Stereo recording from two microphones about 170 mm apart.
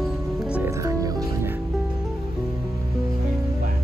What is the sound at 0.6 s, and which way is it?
Music, 20° right (ahead or behind).